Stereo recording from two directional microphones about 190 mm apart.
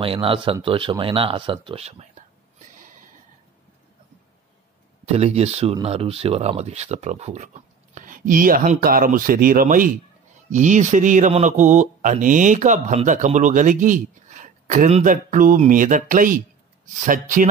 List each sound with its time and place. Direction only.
0.0 s speech: 30° right (ahead or behind)
5.0 s speech: 35° right (ahead or behind)